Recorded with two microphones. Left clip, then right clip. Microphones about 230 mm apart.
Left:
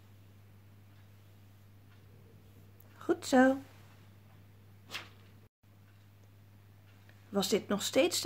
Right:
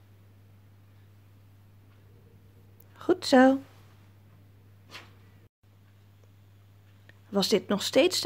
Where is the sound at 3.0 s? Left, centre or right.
Right.